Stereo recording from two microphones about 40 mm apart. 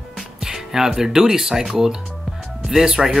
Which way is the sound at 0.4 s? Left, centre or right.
Centre.